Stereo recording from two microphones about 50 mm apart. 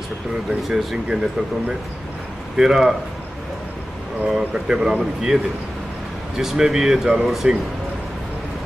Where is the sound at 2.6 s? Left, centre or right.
Centre.